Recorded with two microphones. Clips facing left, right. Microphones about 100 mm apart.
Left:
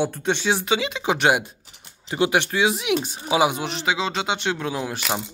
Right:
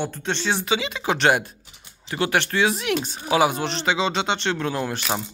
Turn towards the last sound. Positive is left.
turn(degrees=10)  # may be behind; listen again after turning